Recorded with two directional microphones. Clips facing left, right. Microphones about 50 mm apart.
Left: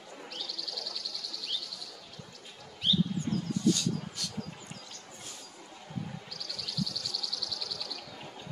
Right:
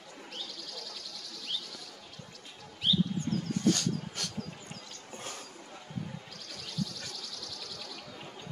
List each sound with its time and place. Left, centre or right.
0.3 s bird: right
2.9 s bird: centre
3.5 s a sound: right
6.3 s bird: right